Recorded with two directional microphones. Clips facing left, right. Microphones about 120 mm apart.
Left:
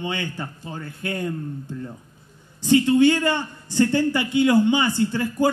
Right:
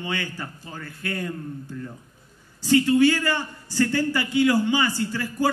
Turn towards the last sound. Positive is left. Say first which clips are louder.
# left 5 dB
turn(degrees=25)  # may be behind; listen again after turning